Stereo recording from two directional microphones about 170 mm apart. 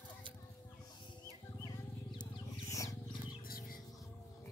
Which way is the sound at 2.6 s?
20° left (ahead or behind).